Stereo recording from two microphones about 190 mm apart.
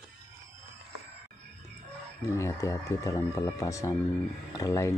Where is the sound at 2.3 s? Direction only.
15° left (ahead or behind).